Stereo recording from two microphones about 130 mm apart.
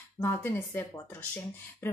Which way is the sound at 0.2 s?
15° left (ahead or behind).